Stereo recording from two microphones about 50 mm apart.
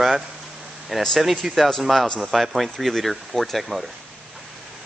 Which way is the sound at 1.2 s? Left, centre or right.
Centre.